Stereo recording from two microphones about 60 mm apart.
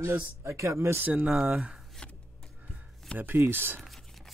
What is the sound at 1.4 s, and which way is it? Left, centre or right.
Speech, centre.